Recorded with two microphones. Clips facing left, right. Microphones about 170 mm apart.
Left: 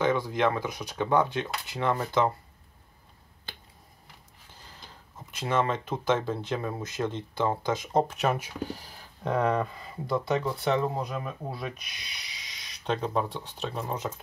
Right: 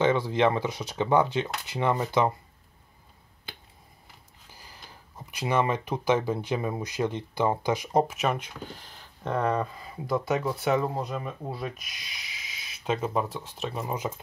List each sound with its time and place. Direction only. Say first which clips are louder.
0.0 s speech: right 2 dB; 25° right (ahead or behind)
5.4 s speech: right 1 dB; 15° right (ahead or behind)
7.9 s speech: even; 5° right (ahead or behind)